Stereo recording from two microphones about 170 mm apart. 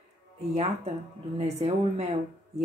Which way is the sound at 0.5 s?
40° right (ahead or behind).